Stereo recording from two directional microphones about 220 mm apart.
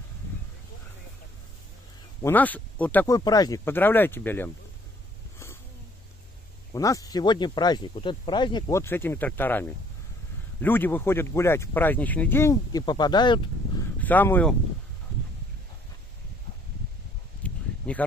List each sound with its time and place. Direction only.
2.2 s speech: 5° left (ahead or behind)
6.7 s speech: 15° left (ahead or behind)
13.9 s speech: 10° left (ahead or behind)
17.4 s a sound: 5° left (ahead or behind)